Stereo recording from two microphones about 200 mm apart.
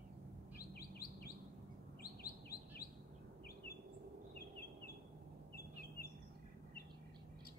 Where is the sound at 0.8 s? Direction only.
50° left (ahead or behind).